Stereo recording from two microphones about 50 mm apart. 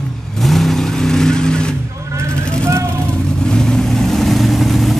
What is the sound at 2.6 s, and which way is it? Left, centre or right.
Vehicle, right.